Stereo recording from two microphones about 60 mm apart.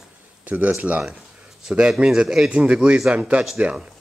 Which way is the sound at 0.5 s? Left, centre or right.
Right.